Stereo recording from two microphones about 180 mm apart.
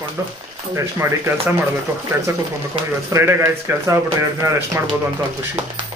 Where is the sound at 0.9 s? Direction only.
15° right (ahead or behind).